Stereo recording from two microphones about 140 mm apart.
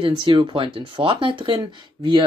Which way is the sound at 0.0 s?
35° right (ahead or behind).